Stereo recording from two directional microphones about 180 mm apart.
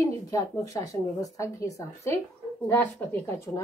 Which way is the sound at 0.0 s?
20° left (ahead or behind).